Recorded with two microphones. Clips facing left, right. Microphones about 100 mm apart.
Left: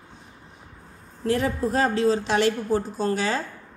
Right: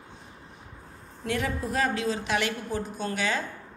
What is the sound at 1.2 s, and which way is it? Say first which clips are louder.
A woman's voice: left 6 dB; 35° left (ahead or behind).